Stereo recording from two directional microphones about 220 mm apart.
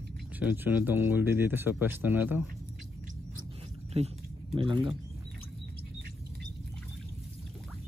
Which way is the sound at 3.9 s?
30° right (ahead or behind).